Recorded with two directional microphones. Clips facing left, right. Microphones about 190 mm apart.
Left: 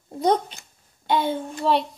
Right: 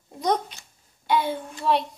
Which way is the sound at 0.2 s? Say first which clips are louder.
Left 4 dB; 30° left (ahead or behind).